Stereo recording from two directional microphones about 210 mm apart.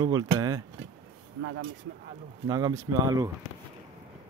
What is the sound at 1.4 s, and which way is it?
Speech, 75° right (ahead or behind).